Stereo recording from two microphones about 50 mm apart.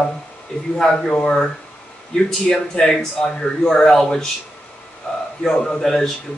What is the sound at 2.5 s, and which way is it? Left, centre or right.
Speech, centre.